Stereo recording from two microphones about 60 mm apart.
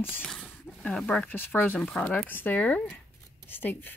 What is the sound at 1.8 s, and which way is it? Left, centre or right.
Speech, centre.